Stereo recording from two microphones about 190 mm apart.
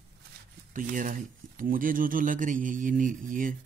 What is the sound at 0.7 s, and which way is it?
Speech, 45° right (ahead or behind).